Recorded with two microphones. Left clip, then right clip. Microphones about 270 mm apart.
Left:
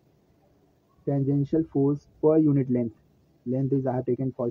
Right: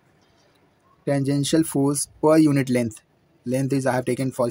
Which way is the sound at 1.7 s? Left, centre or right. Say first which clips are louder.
Right 2 dB; right.